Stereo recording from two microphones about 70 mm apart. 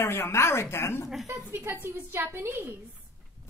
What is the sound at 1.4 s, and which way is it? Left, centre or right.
A woman's voice, right.